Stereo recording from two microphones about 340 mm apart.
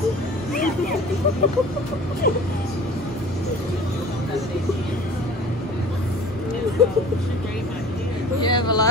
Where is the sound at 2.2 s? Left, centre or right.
Left.